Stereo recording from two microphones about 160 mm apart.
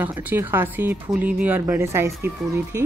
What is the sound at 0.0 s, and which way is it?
Speech, 10° right (ahead or behind).